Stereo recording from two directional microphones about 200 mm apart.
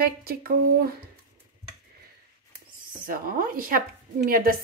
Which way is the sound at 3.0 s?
45° right (ahead or behind).